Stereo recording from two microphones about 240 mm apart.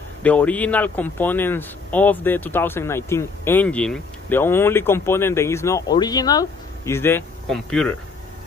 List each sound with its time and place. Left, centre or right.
0.2 s speech: centre